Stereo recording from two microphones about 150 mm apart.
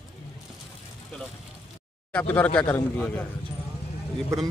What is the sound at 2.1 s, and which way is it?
A man's voice, 10° left (ahead or behind).